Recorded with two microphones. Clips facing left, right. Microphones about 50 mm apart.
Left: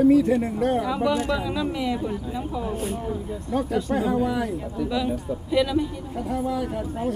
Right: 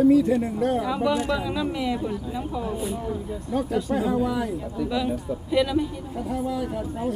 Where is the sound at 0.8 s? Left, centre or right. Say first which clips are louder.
Even; centre.